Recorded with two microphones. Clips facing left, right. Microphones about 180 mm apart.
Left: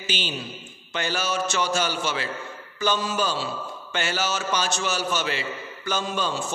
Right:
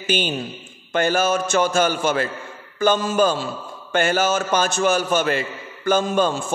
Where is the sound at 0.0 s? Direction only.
50° right (ahead or behind).